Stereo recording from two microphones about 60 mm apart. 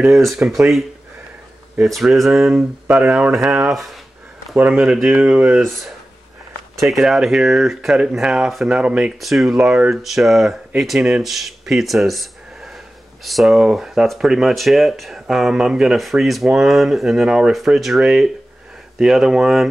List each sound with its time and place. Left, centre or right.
0.1 s speech: centre
1.9 s speech: centre
4.6 s speech: right
6.8 s speech: centre
8.6 s speech: centre
9.2 s speech: centre